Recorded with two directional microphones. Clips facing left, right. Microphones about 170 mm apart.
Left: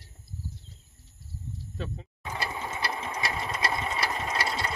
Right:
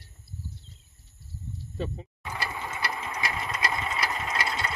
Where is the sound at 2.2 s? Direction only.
25° left (ahead or behind).